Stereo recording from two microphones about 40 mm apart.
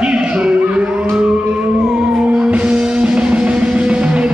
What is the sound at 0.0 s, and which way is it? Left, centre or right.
Music, right.